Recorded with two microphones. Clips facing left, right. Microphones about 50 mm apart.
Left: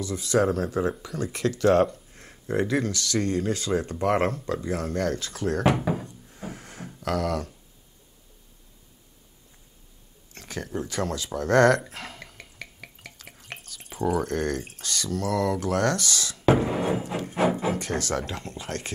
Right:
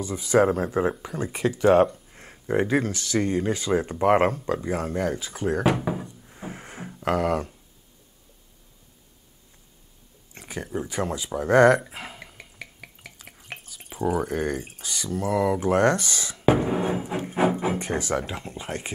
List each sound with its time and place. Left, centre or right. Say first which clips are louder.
0.0 s speech: right 3 dB; right
5.6 s speech: left 2 dB; centre
6.0 s music: even; centre
7.0 s speech: right 3 dB; right
10.3 s speech: right 1 dB; centre
11.9 s drip: right 1 dB; centre
16.4 s speech: even; centre